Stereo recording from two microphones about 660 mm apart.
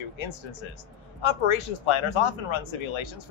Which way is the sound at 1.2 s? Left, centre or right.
Left.